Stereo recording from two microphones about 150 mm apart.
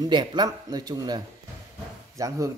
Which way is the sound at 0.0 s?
30° right (ahead or behind).